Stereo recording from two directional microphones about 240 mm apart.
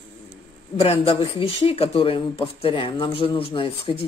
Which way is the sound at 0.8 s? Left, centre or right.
Left.